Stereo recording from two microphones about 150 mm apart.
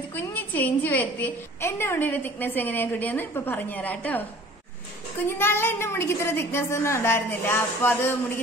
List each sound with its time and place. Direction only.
0.1 s a woman's voice: 10° left (ahead or behind)
5.2 s a woman's voice: 15° left (ahead or behind)